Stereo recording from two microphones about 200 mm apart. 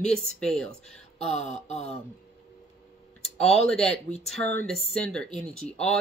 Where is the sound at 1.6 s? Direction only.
30° left (ahead or behind).